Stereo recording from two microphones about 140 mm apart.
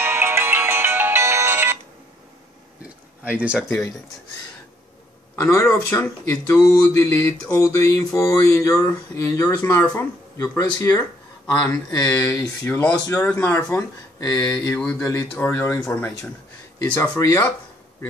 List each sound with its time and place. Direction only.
0.0 s music: 15° right (ahead or behind)
3.3 s speech: 10° right (ahead or behind)
5.3 s speech: 20° left (ahead or behind)
13.7 s speech: 25° left (ahead or behind)
14.8 s speech: 15° left (ahead or behind)
15.8 s speech: 5° left (ahead or behind)
17.2 s speech: 20° left (ahead or behind)